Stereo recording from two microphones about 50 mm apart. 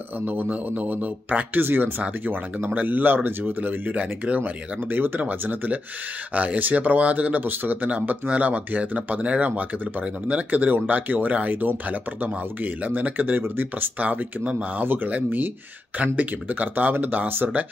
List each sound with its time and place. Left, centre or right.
0.2 s speech: right
3.9 s speech: right
4.9 s speech: right
6.3 s speech: right
13.4 s speech: right
13.9 s speech: right